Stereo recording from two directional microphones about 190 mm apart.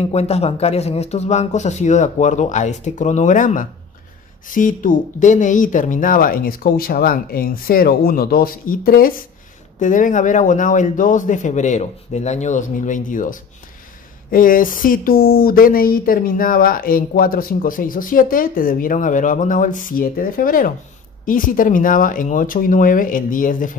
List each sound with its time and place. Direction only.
0.1 s a man's voice: 35° left (ahead or behind)